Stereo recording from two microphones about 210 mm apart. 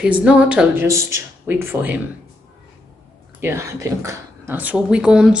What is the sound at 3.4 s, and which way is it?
Speech, 10° right (ahead or behind).